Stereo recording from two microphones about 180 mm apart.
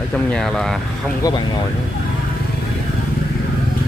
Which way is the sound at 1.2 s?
20° left (ahead or behind).